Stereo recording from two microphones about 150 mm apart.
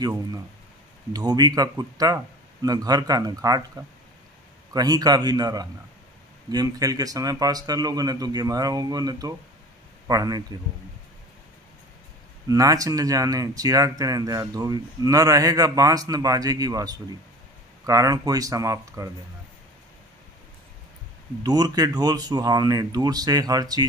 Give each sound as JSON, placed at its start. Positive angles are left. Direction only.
{"t": 0.0, "sound": "speech", "side_deg": -25}
{"t": 4.7, "sound": "speech", "side_deg": -25}
{"t": 12.4, "sound": "speech", "side_deg": -25}
{"t": 21.4, "sound": "speech", "side_deg": -25}